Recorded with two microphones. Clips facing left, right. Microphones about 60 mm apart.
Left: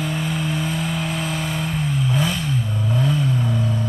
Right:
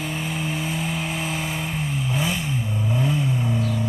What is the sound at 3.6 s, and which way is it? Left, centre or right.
Music, left.